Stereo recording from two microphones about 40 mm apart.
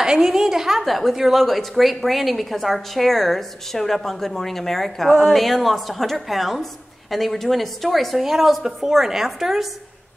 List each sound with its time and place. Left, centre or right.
0.0 s a woman's voice: centre
0.8 s a woman's voice: centre